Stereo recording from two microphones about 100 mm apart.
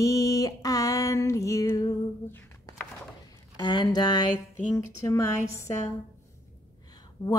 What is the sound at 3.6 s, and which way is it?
Speech, 45° left (ahead or behind).